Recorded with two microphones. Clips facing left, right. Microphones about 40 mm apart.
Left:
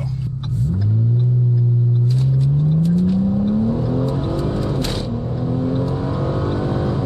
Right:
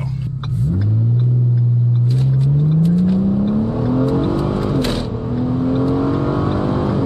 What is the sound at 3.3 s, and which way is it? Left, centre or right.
Vehicle, right.